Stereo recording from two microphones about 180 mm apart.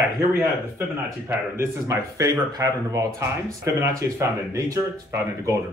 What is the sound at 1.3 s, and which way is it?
Speech, 15° right (ahead or behind).